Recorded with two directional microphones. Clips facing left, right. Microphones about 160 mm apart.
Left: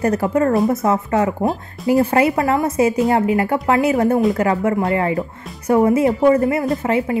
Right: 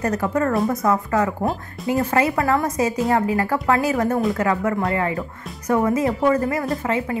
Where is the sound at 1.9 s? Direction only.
30° left (ahead or behind).